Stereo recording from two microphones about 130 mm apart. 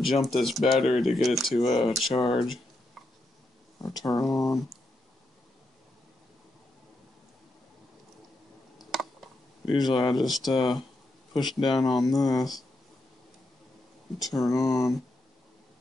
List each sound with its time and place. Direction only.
0.0 s speech: centre (ahead or behind)
2.3 s a sound: centre (ahead or behind)
4.0 s speech: centre (ahead or behind)
8.7 s computer keyboard: centre (ahead or behind)
10.1 s speech: centre (ahead or behind)
11.3 s speech: 35° left (ahead or behind)
11.8 s speech: centre (ahead or behind)
14.3 s speech: centre (ahead or behind)